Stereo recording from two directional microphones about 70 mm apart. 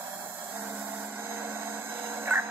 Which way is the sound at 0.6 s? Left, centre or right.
Right.